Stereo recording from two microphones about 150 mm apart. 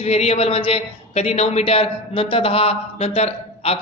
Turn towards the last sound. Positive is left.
turn(degrees=45)  # may be behind; listen again after turning